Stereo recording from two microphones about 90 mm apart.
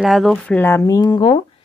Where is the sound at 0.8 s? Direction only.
45° left (ahead or behind).